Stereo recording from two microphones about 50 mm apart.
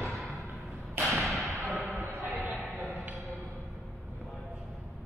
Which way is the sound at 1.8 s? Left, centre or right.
Right.